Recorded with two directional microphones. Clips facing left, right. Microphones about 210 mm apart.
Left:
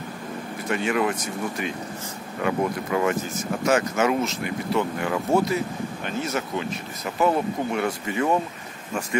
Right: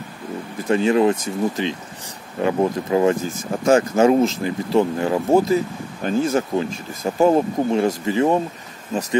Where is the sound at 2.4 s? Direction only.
30° right (ahead or behind).